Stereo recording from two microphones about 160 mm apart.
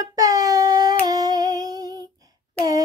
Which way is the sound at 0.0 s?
20° right (ahead or behind).